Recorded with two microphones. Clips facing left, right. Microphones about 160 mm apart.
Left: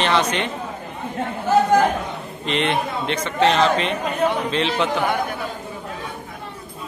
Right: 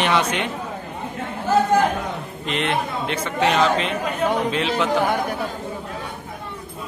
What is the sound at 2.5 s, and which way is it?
A man's voice, 5° right (ahead or behind).